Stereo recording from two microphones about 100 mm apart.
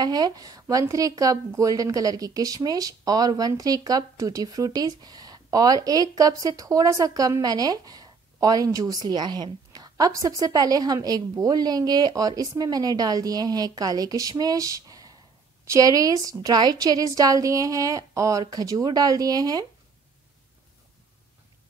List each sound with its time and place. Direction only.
0.0 s a woman's voice: 40° right (ahead or behind)